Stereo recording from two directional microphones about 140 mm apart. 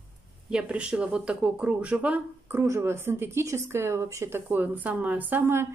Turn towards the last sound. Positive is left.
turn(degrees=-15)  # may be behind; listen again after turning